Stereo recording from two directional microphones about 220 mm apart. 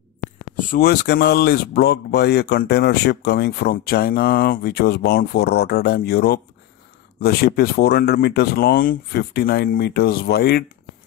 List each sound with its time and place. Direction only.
0.7 s speech: 45° left (ahead or behind)